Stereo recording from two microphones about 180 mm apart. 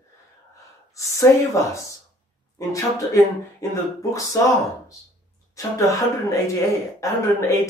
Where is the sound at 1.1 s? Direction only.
15° left (ahead or behind).